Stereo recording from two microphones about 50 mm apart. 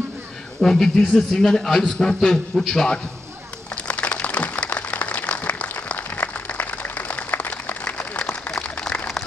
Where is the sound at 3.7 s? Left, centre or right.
Left.